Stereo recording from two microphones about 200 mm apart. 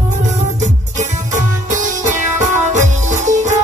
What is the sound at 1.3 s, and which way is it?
Music, 40° right (ahead or behind).